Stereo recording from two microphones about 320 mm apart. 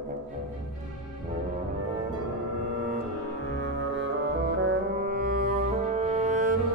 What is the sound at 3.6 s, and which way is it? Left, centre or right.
Music, right.